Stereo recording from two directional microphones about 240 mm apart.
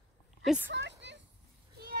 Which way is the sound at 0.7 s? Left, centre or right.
Right.